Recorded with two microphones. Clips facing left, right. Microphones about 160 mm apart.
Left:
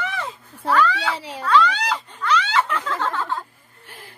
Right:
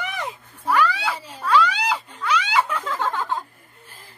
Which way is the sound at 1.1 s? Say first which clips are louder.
Left 2 dB; 75° left (ahead or behind).